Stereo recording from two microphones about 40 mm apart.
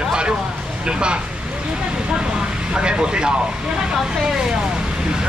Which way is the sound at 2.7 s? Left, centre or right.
Right.